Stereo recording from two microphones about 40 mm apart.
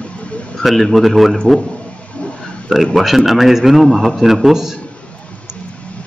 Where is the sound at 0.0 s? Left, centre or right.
Left.